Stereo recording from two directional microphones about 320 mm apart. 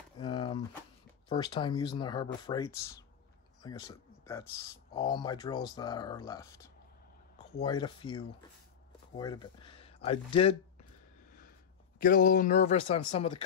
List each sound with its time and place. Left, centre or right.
0.2 s a sound: centre
1.3 s speech: centre
12.0 s speech: left